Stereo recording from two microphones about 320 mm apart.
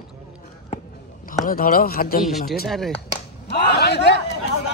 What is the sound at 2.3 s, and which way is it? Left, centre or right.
Speech, centre.